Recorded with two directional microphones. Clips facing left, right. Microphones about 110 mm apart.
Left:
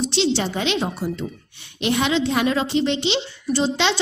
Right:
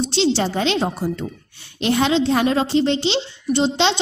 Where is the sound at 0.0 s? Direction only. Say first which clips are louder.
Right 2 dB; 30° right (ahead or behind).